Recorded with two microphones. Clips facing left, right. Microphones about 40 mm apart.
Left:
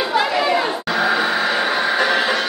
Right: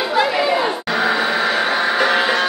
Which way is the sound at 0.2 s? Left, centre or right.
Centre.